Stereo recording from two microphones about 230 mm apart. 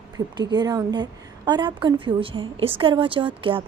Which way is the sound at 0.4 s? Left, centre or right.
Centre.